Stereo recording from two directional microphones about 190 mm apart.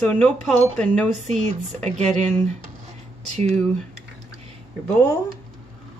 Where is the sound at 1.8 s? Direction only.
35° right (ahead or behind).